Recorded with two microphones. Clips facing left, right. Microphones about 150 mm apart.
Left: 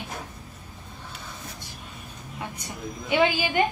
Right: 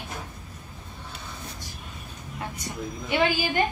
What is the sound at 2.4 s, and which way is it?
A woman's voice, 15° left (ahead or behind).